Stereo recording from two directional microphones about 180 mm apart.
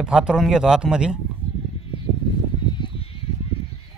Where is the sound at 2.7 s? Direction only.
25° left (ahead or behind).